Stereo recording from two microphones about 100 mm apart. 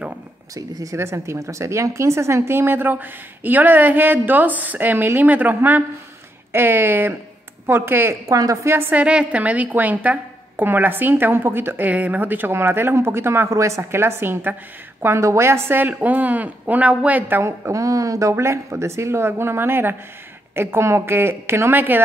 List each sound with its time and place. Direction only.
0.6 s a woman's voice: 35° right (ahead or behind)
8.3 s a woman's voice: 35° right (ahead or behind)
8.7 s a woman's voice: 20° right (ahead or behind)
9.0 s a woman's voice: 10° right (ahead or behind)